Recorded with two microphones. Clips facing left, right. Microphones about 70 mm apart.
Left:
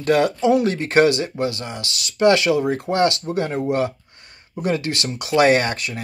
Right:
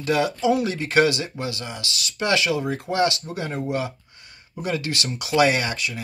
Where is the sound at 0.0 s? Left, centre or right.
Left.